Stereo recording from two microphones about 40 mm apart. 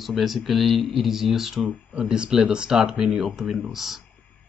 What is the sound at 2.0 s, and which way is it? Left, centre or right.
Speech, right.